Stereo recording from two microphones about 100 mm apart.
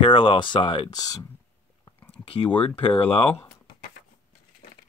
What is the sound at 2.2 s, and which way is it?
Speech, 65° left (ahead or behind).